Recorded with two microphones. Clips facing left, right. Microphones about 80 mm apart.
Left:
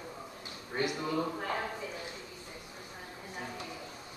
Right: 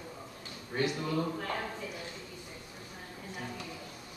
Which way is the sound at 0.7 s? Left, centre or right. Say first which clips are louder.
Right 1 dB; centre.